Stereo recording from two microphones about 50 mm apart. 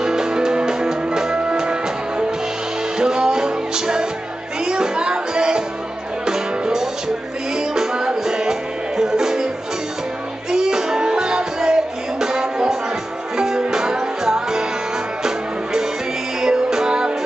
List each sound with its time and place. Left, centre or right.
0.0 s music: centre
10.5 s music: centre